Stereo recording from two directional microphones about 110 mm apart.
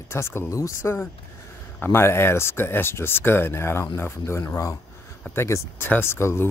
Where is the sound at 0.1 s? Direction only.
20° left (ahead or behind).